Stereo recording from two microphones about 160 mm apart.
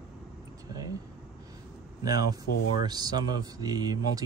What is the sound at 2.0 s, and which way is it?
Speech, 25° right (ahead or behind).